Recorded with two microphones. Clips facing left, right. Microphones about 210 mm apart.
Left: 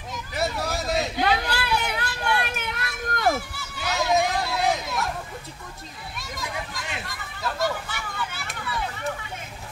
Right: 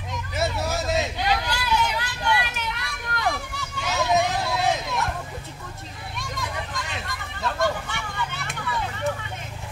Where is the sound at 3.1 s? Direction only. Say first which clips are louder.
Left 3 dB; 40° left (ahead or behind).